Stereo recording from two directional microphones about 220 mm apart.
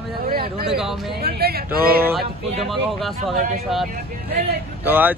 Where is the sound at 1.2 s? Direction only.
45° right (ahead or behind).